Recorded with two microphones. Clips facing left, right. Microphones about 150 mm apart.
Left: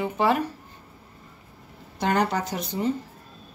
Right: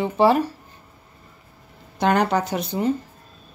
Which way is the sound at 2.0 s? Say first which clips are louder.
Right 4 dB; 70° right (ahead or behind).